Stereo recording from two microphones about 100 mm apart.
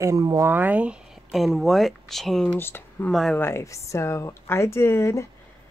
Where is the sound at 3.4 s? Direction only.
25° left (ahead or behind).